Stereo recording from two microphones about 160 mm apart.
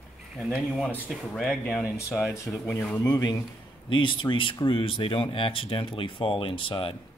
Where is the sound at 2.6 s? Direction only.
15° left (ahead or behind).